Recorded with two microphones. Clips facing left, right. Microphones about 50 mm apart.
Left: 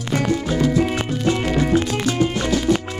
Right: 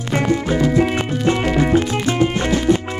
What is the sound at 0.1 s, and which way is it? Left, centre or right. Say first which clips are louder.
Music: right 2 dB; right.